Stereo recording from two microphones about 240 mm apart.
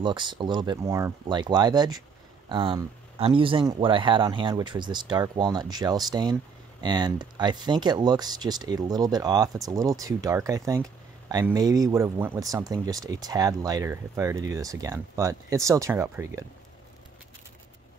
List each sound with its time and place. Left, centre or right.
0.0 s speech: centre